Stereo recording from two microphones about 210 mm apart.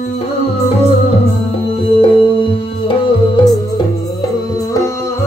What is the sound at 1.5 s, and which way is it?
Music, 25° left (ahead or behind).